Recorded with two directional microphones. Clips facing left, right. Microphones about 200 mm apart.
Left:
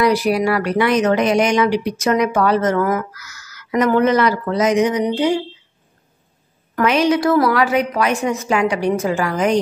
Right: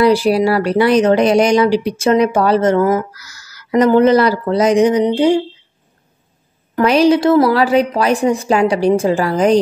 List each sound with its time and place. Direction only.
0.0 s speech: 30° right (ahead or behind)
6.7 s speech: 30° right (ahead or behind)